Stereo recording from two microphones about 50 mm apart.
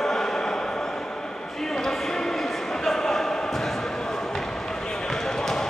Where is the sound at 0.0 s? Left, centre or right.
Centre.